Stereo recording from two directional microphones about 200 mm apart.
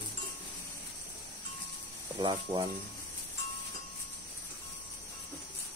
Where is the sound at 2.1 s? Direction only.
25° right (ahead or behind).